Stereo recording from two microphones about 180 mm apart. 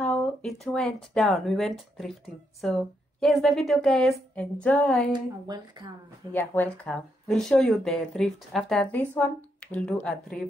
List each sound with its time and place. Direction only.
0.0 s a sound: 5° left (ahead or behind)
1.1 s speech: centre (ahead or behind)
5.1 s speech: 25° right (ahead or behind)
6.3 s speech: 10° left (ahead or behind)